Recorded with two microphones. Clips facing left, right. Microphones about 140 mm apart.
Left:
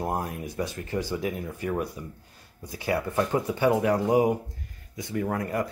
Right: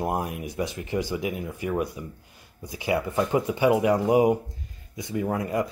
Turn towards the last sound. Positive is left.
turn(degrees=-15)  # may be behind; listen again after turning